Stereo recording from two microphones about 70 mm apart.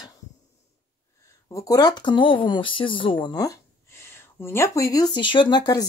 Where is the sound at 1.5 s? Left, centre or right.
Left.